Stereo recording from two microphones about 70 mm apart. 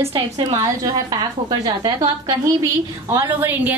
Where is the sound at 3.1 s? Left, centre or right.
Right.